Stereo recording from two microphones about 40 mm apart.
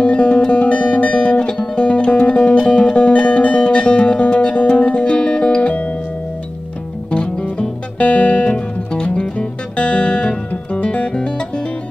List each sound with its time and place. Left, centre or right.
0.0 s music: left
7.1 s music: left